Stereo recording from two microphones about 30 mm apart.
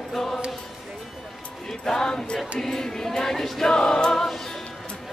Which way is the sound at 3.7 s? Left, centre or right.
Left.